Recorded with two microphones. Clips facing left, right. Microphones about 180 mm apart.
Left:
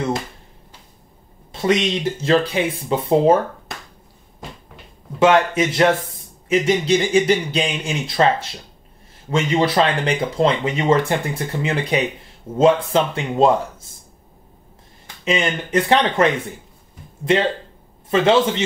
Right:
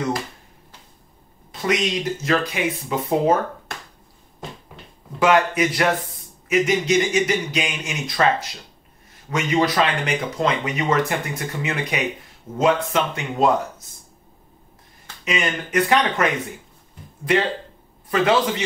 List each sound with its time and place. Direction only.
1.5 s speech: 25° left (ahead or behind)
5.2 s speech: 25° left (ahead or behind)
15.2 s speech: 25° left (ahead or behind)